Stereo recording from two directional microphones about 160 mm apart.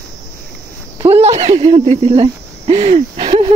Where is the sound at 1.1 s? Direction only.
40° right (ahead or behind).